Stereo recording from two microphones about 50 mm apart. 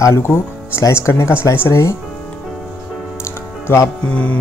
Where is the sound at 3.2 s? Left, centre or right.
Left.